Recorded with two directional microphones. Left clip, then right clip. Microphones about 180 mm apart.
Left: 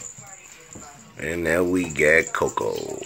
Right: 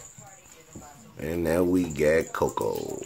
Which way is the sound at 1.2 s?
20° right (ahead or behind).